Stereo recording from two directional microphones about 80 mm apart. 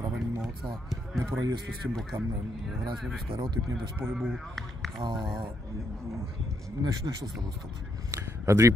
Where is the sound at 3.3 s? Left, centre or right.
Right.